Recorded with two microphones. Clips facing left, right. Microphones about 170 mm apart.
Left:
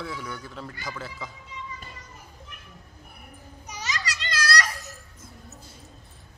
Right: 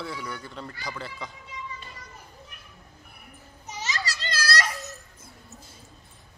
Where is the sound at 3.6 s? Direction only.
25° right (ahead or behind).